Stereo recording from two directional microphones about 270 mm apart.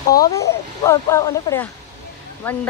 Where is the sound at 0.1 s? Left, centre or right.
Centre.